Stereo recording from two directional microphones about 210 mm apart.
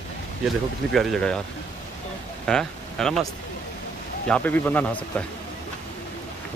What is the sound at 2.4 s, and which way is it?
Speech, 5° left (ahead or behind).